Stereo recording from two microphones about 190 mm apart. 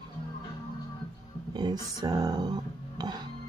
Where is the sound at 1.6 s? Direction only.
20° right (ahead or behind).